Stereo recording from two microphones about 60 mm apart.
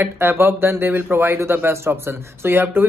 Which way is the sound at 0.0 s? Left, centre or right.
Right.